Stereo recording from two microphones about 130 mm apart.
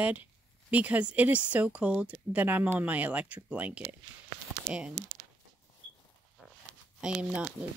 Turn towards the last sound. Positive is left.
turn(degrees=-10)  # may be behind; listen again after turning